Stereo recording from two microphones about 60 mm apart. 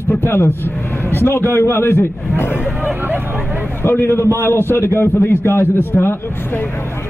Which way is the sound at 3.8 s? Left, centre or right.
Left.